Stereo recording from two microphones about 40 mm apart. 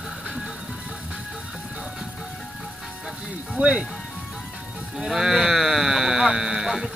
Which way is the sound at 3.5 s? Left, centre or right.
Right.